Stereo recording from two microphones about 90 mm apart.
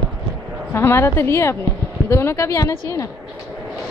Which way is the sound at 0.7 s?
30° left (ahead or behind).